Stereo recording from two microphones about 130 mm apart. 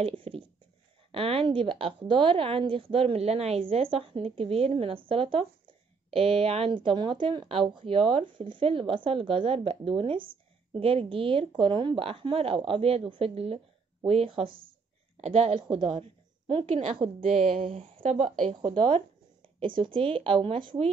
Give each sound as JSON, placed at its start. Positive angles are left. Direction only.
{"t": 0.0, "sound": "speech", "side_deg": -45}
{"t": 15.1, "sound": "a woman's voice", "side_deg": -55}
{"t": 15.7, "sound": "a woman's voice", "side_deg": -40}
{"t": 16.6, "sound": "a woman's voice", "side_deg": -60}
{"t": 17.6, "sound": "speech", "side_deg": -45}
{"t": 18.5, "sound": "speech", "side_deg": -45}